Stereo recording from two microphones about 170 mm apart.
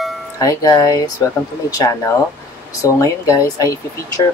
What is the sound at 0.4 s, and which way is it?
Speech, 20° left (ahead or behind).